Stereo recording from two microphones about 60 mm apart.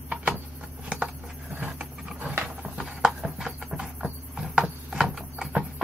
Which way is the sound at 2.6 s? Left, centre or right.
Centre.